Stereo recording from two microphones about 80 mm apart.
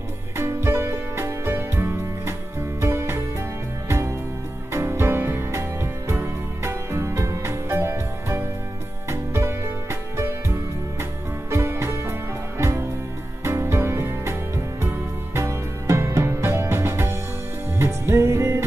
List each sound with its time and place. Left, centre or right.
0.4 s music: right
4.7 s music: right